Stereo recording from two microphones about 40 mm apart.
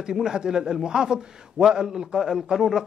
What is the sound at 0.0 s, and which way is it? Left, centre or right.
Speech, centre.